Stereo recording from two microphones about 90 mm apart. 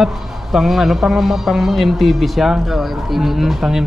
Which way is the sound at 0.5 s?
5° right (ahead or behind).